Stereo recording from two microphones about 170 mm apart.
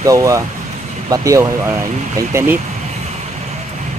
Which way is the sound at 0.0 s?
20° right (ahead or behind).